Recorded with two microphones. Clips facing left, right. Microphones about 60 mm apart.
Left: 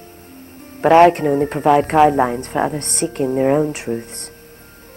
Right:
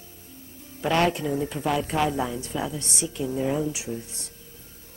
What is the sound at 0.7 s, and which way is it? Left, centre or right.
Speech, left.